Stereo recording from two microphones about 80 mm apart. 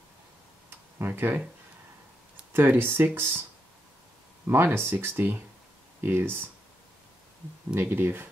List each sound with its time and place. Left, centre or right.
0.7 s tick-tock: right
2.5 s speech: right
4.5 s speech: right
7.7 s speech: right